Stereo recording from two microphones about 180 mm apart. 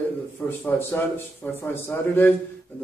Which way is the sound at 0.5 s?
10° left (ahead or behind).